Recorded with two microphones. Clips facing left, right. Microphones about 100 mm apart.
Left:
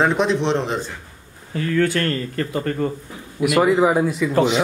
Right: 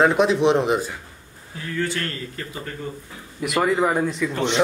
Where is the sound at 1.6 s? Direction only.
60° left (ahead or behind).